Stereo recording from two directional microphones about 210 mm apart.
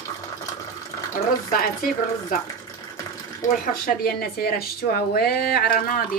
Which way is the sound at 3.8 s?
45° left (ahead or behind).